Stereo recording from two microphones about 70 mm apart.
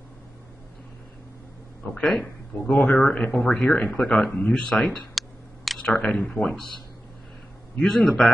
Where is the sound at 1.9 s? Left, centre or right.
Centre.